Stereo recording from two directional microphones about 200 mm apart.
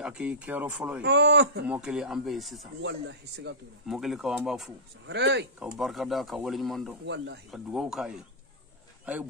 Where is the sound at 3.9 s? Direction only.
Centre (ahead or behind).